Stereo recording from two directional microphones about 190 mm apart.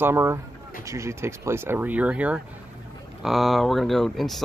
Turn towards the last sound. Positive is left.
turn(degrees=0)  # may be behind; listen again after turning